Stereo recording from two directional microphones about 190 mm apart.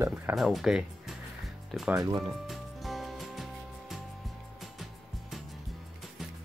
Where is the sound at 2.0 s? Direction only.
20° right (ahead or behind).